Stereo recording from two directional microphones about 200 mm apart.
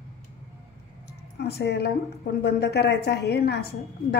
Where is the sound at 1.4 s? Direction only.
55° left (ahead or behind).